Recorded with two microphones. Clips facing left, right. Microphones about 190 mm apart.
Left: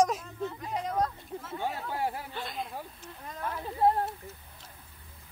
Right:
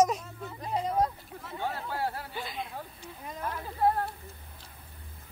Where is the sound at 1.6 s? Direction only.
15° left (ahead or behind).